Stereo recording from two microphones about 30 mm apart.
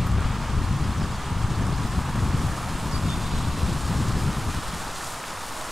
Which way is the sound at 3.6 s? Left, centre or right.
Centre.